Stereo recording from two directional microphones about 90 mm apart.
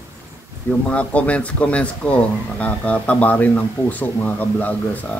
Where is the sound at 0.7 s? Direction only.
15° left (ahead or behind).